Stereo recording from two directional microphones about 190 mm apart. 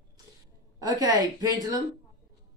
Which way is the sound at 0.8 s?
20° right (ahead or behind).